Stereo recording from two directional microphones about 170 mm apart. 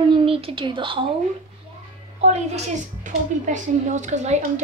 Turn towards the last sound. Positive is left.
turn(degrees=-45)  # may be behind; listen again after turning